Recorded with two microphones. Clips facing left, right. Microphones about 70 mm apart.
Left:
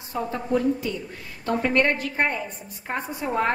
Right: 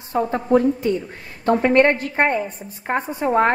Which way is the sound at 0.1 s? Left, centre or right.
Right.